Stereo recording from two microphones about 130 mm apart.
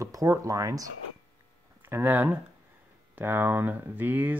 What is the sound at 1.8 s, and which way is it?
Speech, 15° right (ahead or behind).